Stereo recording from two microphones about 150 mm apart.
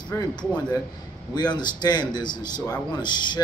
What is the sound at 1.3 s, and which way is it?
Speech, 30° left (ahead or behind).